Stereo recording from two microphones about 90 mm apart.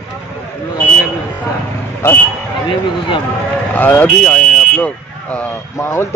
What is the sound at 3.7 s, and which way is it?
Speech, 20° left (ahead or behind).